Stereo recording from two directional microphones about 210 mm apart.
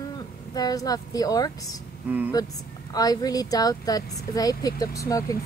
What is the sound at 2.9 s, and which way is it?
A woman's voice, 20° left (ahead or behind).